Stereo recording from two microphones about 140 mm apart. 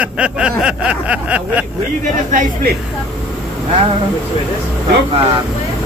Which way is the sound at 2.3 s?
90° right.